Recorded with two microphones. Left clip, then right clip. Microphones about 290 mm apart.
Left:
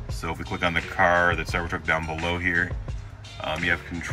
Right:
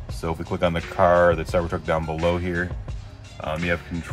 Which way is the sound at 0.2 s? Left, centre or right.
Centre.